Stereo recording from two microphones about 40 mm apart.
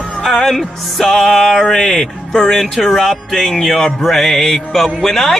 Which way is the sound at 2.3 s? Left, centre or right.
Centre.